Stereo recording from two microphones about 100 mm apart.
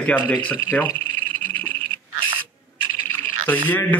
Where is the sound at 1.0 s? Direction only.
15° left (ahead or behind).